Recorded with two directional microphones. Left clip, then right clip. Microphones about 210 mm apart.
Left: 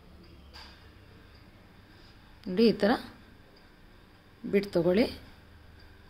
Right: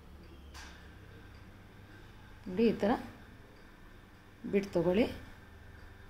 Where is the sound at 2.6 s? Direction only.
35° left (ahead or behind).